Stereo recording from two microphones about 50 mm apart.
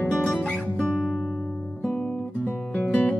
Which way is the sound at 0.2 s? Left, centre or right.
Centre.